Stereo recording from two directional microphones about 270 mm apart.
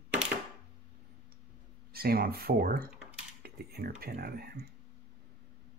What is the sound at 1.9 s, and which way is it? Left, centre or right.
Speech, right.